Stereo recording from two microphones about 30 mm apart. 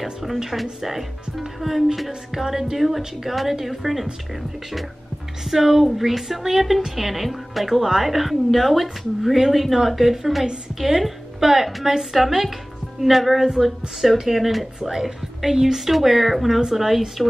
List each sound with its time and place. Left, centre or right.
0.0 s a woman's voice: centre
2.3 s a woman's voice: centre
5.5 s a woman's voice: centre
13.4 s a woman's voice: centre
14.8 s a woman's voice: centre